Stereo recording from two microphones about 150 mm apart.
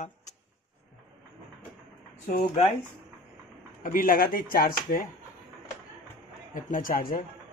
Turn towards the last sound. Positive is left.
turn(degrees=70)  # may be behind; listen again after turning